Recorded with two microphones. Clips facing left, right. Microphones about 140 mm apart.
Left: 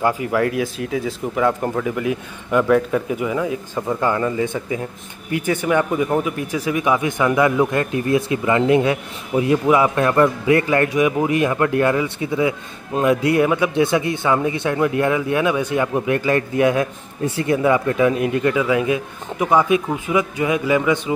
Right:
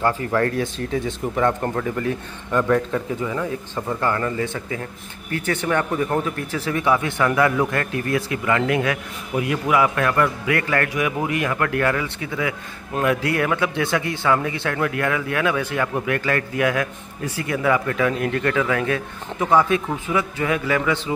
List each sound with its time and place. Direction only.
0.0 s speech: 15° left (ahead or behind)